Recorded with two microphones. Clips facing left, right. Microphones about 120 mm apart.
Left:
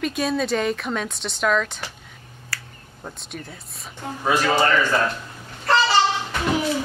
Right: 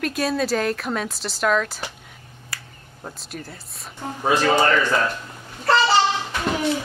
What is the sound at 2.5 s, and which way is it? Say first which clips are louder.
Finger snapping: left 2 dB; 20° right (ahead or behind).